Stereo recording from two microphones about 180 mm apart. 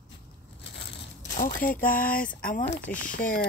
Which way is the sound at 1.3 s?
45° left (ahead or behind).